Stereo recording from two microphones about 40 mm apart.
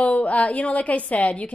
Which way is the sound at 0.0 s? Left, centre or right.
Left.